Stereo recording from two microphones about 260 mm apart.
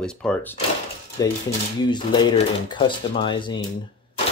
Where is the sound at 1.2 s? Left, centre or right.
Centre.